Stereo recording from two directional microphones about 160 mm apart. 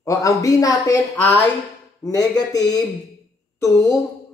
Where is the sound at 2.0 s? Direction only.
25° left (ahead or behind).